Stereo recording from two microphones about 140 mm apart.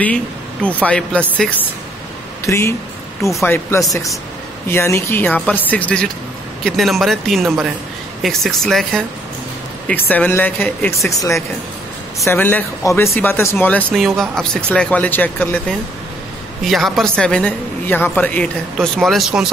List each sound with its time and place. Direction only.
0.0 s speech: 10° left (ahead or behind)
2.4 s a woman's voice: 20° left (ahead or behind)
13.9 s speech: centre (ahead or behind)
16.6 s a woman's voice: centre (ahead or behind)